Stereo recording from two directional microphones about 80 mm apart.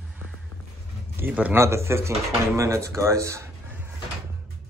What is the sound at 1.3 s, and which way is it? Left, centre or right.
Speech, centre.